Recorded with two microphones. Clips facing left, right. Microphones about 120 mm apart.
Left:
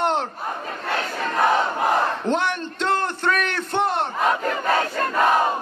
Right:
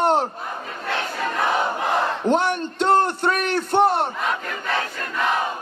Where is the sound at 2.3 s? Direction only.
15° right (ahead or behind).